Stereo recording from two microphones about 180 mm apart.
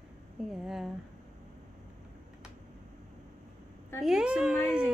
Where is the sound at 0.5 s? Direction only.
Centre (ahead or behind).